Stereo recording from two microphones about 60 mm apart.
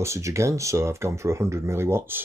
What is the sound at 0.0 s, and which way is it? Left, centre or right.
Speech, right.